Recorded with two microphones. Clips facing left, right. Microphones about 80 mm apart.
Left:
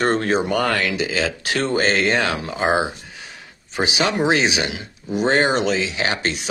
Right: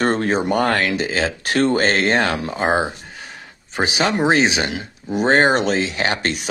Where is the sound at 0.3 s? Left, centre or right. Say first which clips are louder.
Right 1 dB; right.